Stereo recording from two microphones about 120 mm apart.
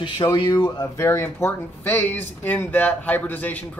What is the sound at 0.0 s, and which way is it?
Speech, 40° left (ahead or behind).